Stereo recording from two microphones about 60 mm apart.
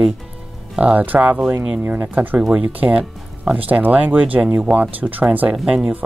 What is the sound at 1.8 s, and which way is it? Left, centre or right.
Speech, right.